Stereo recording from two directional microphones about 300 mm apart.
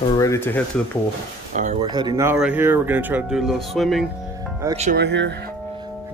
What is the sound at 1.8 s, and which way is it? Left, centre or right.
Speech, centre.